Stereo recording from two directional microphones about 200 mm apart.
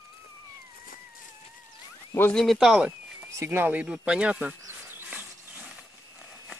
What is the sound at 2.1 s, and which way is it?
Speech, 5° left (ahead or behind).